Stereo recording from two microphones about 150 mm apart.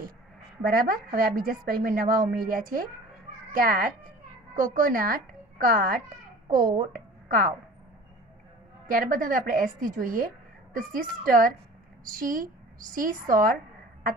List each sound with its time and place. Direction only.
0.6 s a woman's voice: 75° right (ahead or behind)
8.8 s a woman's voice: 65° right (ahead or behind)